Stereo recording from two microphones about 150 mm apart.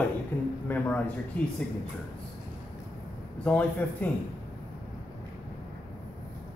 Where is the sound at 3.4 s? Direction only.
10° left (ahead or behind).